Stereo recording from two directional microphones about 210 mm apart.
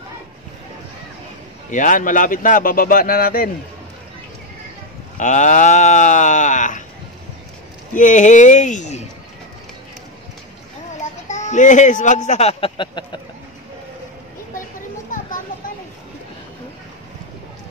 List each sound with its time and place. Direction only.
1.7 s a man's voice: 40° left (ahead or behind)
5.1 s a man's voice: 35° left (ahead or behind)
7.9 s a man's voice: 35° left (ahead or behind)
11.2 s speech: 35° left (ahead or behind)